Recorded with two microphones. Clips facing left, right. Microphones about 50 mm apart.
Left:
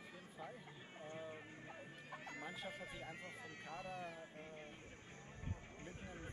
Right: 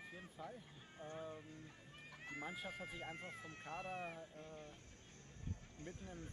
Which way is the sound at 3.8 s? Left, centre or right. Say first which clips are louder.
Right 2 dB; right.